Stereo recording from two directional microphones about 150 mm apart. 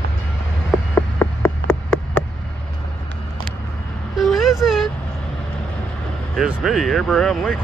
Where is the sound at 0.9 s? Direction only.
15° left (ahead or behind).